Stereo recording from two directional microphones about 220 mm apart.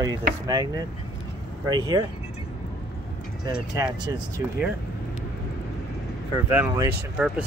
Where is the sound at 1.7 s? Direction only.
20° right (ahead or behind).